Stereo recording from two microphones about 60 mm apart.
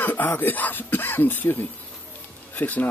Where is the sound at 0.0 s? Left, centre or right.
Left.